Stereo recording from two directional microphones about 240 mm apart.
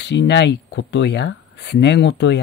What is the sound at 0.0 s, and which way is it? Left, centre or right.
Speech, left.